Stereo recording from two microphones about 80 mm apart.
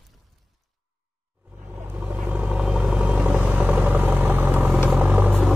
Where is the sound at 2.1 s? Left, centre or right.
Centre.